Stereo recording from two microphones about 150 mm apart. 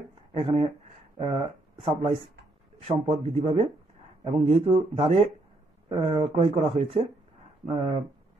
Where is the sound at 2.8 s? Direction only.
40° right (ahead or behind).